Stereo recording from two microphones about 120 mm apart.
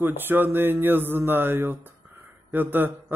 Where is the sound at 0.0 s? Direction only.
15° right (ahead or behind).